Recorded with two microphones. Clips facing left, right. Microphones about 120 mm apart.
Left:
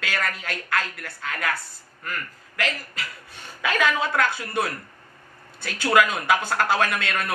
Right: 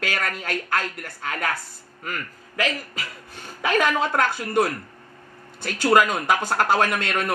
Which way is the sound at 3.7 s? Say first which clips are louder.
Right 2 dB; 45° right (ahead or behind).